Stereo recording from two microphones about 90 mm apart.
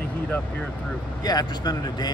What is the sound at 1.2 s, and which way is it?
Speech, 45° left (ahead or behind).